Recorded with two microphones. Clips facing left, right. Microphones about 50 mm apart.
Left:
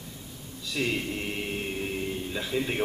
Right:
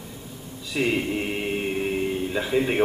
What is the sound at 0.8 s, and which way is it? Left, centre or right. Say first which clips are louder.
A man's voice: right 6 dB; centre.